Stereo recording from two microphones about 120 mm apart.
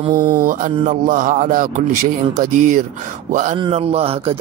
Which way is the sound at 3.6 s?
55° right (ahead or behind).